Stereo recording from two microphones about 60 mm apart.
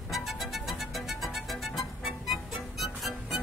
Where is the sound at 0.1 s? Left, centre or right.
Centre.